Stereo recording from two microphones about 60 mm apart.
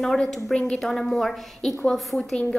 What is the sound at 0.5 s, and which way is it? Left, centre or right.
A woman's voice, centre.